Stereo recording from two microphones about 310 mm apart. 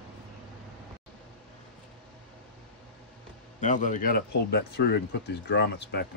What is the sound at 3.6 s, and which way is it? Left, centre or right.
Speech, left.